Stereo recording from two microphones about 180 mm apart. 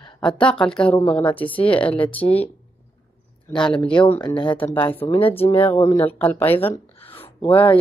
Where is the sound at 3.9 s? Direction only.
25° left (ahead or behind).